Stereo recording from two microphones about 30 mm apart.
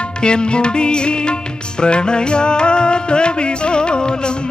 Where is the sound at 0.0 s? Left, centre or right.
Left.